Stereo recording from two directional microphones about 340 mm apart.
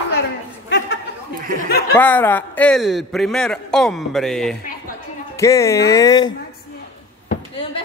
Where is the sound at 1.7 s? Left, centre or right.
Left.